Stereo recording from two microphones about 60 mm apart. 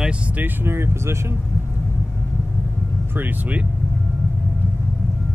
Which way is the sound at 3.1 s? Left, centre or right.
Right.